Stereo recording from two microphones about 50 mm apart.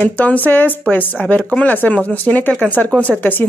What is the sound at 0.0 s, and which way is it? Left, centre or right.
Speech, left.